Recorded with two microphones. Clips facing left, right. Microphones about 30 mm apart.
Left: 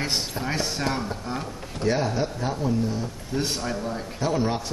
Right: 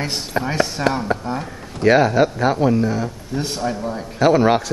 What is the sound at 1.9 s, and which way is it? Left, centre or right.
Speech, right.